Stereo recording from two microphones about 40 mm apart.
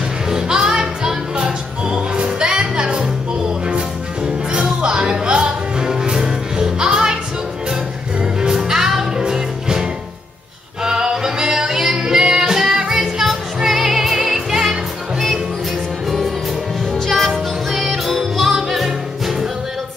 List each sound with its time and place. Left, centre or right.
0.3 s music: centre
4.5 s music: right
8.2 s music: centre
13.0 s music: centre
17.0 s music: centre